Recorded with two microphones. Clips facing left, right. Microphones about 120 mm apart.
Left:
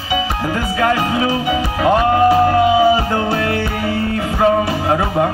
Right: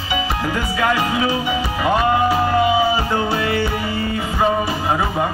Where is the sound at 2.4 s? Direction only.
50° left (ahead or behind).